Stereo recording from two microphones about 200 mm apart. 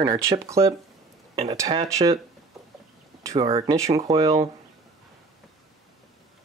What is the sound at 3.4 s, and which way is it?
Speech, 30° right (ahead or behind).